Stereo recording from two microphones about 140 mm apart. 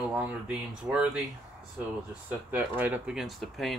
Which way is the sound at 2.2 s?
15° right (ahead or behind).